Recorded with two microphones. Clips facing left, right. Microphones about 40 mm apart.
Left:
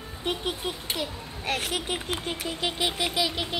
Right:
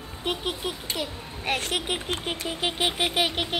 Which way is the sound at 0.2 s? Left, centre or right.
Centre.